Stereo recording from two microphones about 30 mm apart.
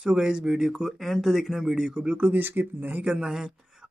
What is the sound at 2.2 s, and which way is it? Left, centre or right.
Speech, right.